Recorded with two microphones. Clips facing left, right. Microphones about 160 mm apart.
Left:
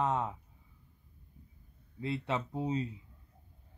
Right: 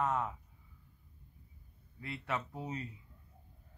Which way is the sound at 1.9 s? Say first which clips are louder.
Left 5 dB; 25° left (ahead or behind).